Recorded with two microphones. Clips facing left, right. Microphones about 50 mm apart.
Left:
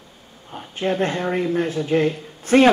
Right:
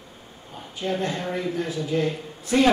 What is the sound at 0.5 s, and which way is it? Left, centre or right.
Speech, left.